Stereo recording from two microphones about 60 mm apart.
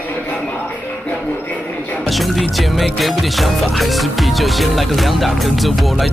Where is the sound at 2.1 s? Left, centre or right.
Centre.